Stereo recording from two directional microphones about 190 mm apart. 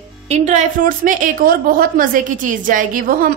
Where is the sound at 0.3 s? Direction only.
40° right (ahead or behind).